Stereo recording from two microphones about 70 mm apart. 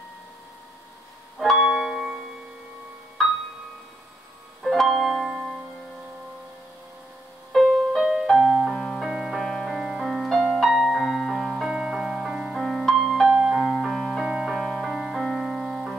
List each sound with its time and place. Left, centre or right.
1.4 s music: centre
4.6 s music: centre
7.5 s music: centre
7.9 s music: centre
13.3 s music: centre
13.6 s music: centre